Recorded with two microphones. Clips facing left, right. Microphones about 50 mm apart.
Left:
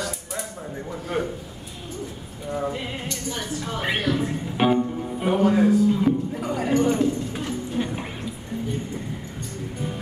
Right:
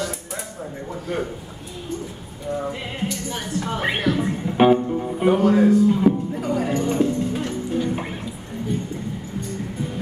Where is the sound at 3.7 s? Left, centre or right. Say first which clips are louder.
Right 2 dB; right.